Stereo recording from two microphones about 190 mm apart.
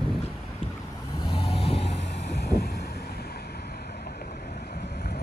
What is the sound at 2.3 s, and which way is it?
Boat, 55° left (ahead or behind).